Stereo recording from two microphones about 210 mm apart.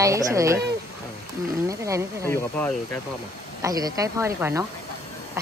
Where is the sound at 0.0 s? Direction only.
15° right (ahead or behind).